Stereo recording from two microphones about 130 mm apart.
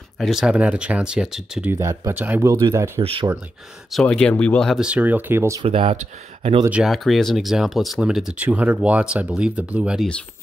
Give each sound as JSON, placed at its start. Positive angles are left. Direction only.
{"t": 0.2, "sound": "speech", "side_deg": -5}
{"t": 1.7, "sound": "speech", "side_deg": -20}
{"t": 3.0, "sound": "speech", "side_deg": -50}
{"t": 3.9, "sound": "speech", "side_deg": 5}
{"t": 4.7, "sound": "speech", "side_deg": -10}
{"t": 5.6, "sound": "speech", "side_deg": -45}
{"t": 6.7, "sound": "speech", "side_deg": -5}